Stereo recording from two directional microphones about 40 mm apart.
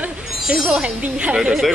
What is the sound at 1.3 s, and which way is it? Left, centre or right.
Speech, centre.